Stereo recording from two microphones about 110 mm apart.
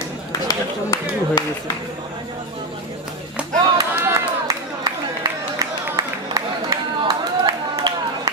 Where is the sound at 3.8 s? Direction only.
35° right (ahead or behind).